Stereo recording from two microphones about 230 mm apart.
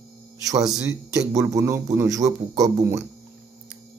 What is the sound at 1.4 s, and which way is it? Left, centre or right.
Speech, centre.